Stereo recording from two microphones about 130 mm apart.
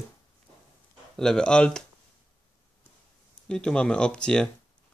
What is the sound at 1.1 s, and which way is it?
Speech, 5° left (ahead or behind).